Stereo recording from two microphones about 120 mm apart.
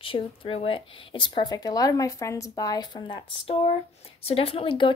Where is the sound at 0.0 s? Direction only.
50° left (ahead or behind).